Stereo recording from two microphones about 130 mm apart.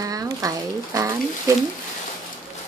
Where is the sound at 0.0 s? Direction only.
25° right (ahead or behind).